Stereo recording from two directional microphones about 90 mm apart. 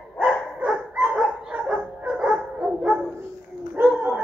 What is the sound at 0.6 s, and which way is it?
Dog, 15° right (ahead or behind).